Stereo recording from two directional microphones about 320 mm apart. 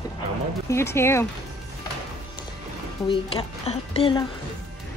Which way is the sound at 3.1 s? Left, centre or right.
Centre.